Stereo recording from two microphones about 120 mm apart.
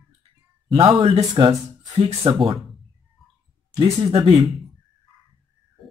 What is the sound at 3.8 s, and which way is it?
Speech, 45° right (ahead or behind).